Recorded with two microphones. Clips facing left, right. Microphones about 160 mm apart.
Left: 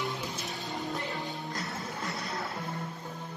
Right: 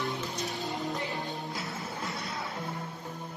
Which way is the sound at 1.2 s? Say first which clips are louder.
Right 1 dB; 20° right (ahead or behind).